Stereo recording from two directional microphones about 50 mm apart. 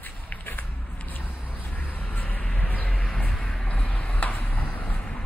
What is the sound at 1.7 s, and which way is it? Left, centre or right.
Vehicle, left.